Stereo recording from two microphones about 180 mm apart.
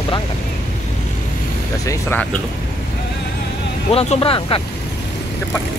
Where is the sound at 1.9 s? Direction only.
15° left (ahead or behind).